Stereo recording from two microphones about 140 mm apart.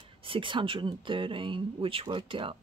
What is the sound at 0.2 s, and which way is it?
Speech, 35° right (ahead or behind).